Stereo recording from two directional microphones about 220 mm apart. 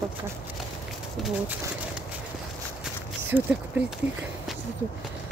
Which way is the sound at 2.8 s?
5° right (ahead or behind).